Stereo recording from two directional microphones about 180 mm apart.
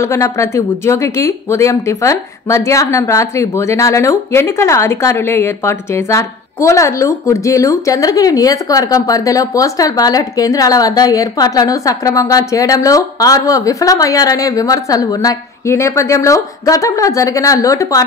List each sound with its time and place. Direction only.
0.0 s speech: 15° left (ahead or behind)